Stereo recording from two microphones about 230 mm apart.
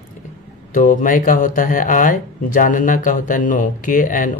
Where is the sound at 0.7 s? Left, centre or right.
Left.